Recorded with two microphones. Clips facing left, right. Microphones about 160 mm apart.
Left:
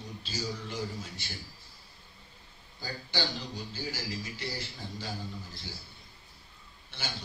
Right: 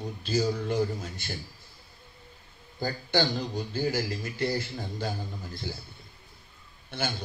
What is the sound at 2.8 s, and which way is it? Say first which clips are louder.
Speech: right 8 dB; 50° right (ahead or behind).